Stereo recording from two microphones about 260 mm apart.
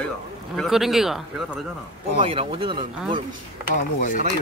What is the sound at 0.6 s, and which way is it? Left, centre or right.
Speech, centre.